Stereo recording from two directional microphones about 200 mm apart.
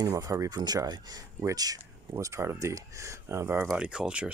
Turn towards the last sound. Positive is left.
turn(degrees=-5)  # may be behind; listen again after turning